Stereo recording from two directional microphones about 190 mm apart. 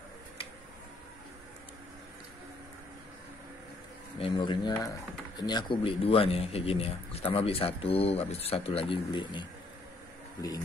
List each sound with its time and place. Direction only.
4.2 s speech: 25° left (ahead or behind)